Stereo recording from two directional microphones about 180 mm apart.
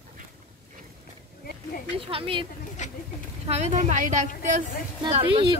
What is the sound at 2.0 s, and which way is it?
Speech, 30° right (ahead or behind).